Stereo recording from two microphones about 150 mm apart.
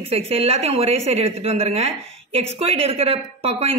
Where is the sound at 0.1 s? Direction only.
40° right (ahead or behind).